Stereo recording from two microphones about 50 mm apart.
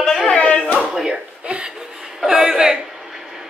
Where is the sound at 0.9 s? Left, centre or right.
Centre.